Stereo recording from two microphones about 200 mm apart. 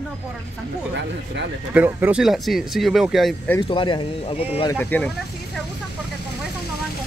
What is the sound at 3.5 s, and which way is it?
Speech, 25° left (ahead or behind).